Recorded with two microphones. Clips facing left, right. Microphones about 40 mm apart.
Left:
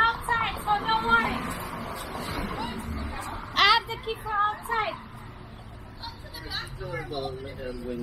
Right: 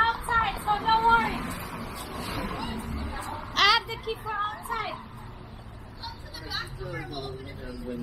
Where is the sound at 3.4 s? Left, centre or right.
Centre.